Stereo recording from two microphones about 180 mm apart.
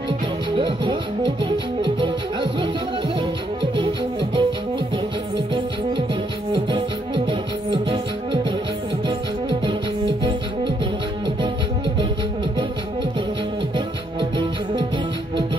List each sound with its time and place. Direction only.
0.6 s music: 25° right (ahead or behind)
3.7 s music: 25° right (ahead or behind)
9.0 s music: 25° right (ahead or behind)